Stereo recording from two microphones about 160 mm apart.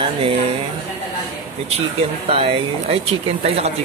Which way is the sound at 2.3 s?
40° right (ahead or behind).